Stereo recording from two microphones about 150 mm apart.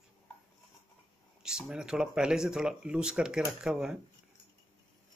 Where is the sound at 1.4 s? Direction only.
5° right (ahead or behind).